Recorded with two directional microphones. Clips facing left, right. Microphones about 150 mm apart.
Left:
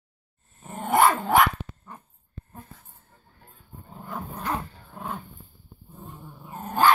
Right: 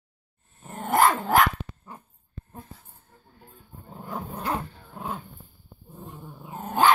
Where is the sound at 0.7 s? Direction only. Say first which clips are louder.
Left 1 dB; centre (ahead or behind).